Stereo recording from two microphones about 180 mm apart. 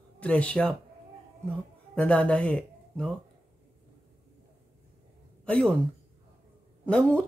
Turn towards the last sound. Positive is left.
turn(degrees=5)  # may be behind; listen again after turning